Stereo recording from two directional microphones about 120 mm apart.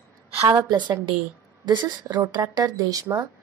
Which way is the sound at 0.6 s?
35° right (ahead or behind).